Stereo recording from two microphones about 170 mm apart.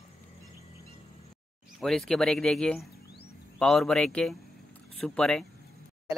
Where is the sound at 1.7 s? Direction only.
Centre (ahead or behind).